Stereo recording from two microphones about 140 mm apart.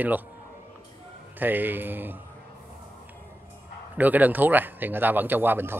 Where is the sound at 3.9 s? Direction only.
10° right (ahead or behind).